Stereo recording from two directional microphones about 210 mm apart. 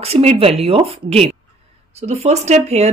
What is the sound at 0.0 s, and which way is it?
Speech, 30° right (ahead or behind).